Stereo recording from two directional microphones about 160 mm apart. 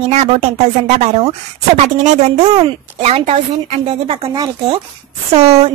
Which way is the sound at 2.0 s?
45° right (ahead or behind).